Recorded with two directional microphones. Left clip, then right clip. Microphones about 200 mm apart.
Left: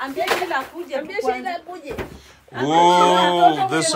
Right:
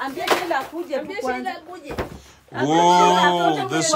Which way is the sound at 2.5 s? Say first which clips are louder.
Left 1 dB; 20° right (ahead or behind).